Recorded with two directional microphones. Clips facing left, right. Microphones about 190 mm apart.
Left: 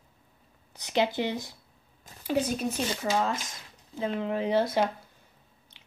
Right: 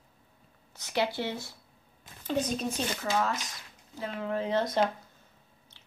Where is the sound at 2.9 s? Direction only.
20° left (ahead or behind).